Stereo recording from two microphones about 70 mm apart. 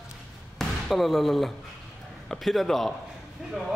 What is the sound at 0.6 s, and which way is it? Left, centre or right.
Speech, centre.